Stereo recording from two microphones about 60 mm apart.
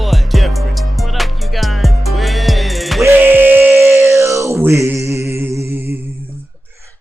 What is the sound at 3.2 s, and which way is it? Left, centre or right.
Music, right.